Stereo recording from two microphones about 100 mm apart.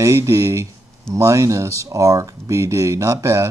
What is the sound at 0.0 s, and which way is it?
Speech, 30° right (ahead or behind).